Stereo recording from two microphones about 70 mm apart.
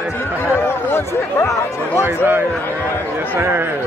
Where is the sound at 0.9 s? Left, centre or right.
Left.